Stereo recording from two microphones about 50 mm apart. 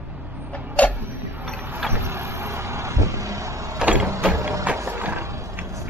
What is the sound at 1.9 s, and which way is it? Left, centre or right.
Vehicle, right.